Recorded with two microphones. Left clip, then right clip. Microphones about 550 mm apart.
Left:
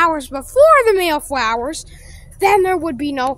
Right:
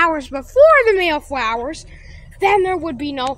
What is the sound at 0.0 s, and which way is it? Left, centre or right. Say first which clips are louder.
A woman's voice: left 1 dB; left.